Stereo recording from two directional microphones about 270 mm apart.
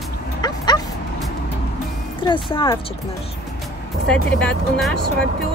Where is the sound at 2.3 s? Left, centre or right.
Centre.